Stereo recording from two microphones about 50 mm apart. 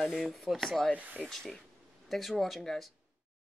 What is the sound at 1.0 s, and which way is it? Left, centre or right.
Speech, right.